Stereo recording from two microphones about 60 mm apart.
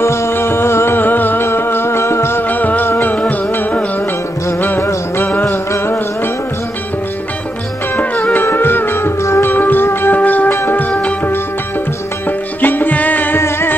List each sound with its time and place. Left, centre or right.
0.0 s music: left
2.5 s music: left
5.4 s music: left
8.2 s music: left
9.2 s music: left
9.5 s music: left
10.9 s music: left
12.3 s music: left
13.4 s music: left